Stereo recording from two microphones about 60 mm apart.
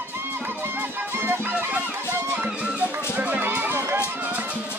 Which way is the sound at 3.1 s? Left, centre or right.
Right.